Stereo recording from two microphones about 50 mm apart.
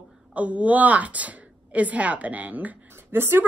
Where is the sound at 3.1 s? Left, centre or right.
Right.